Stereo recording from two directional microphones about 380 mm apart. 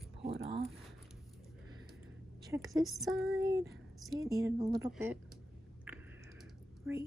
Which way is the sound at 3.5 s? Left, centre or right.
Centre.